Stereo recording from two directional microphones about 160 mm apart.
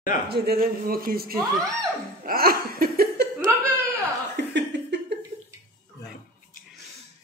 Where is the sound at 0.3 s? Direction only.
70° right (ahead or behind).